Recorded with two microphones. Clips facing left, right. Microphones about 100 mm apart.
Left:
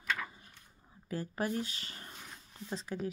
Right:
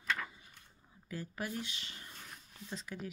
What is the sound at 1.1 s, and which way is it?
Speech, 45° left (ahead or behind).